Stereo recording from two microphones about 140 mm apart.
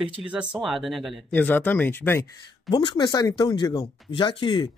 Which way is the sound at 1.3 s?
15° left (ahead or behind).